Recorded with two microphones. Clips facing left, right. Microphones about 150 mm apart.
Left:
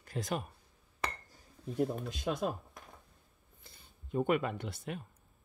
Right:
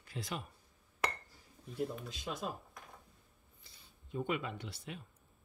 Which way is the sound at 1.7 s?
50° left (ahead or behind).